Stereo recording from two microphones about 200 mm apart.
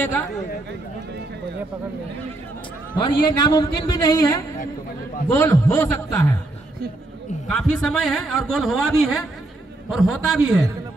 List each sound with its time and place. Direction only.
0.0 s a man's voice: 10° left (ahead or behind)
3.0 s a man's voice: 20° left (ahead or behind)
7.4 s a man's voice: 5° left (ahead or behind)